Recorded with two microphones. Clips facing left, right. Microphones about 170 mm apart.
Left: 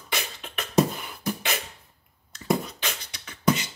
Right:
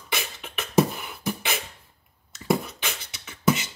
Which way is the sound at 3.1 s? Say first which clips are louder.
Right 1 dB; 5° right (ahead or behind).